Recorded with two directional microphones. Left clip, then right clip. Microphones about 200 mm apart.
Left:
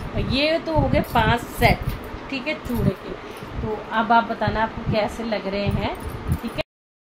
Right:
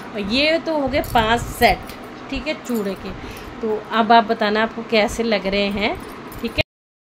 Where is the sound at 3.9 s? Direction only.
50° right (ahead or behind).